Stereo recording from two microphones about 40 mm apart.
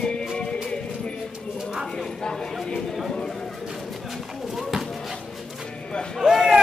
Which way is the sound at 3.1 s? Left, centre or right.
Centre.